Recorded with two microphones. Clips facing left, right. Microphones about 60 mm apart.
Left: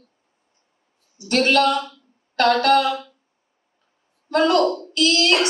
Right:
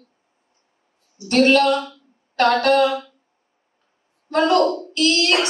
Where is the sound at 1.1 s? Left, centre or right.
Right.